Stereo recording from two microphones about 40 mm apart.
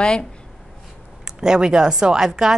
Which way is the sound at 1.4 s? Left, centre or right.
Centre.